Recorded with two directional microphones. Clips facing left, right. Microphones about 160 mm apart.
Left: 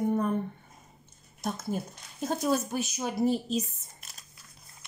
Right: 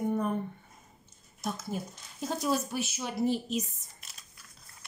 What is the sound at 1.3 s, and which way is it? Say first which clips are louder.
Speech: left 3 dB; 55° left (ahead or behind).